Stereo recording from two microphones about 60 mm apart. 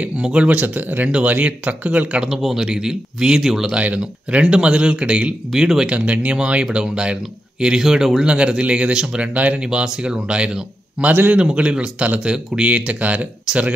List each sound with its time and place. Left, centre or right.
0.0 s speech: centre
2.2 s speech: centre
3.7 s speech: centre
9.3 s speech: right
9.6 s speech: centre
11.1 s a man's voice: right
11.5 s speech: centre